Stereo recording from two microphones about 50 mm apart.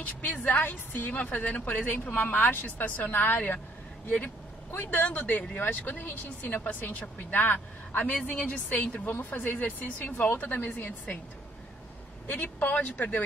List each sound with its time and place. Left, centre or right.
0.0 s speech: left
1.2 s speech: left
4.7 s speech: left
12.3 s speech: left